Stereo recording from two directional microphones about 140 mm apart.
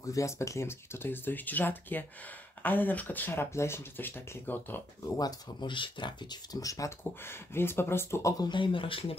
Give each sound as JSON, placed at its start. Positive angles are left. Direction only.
{"t": 0.0, "sound": "speech", "side_deg": 20}